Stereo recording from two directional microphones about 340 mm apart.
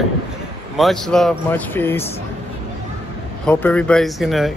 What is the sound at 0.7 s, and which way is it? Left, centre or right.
Speech, centre.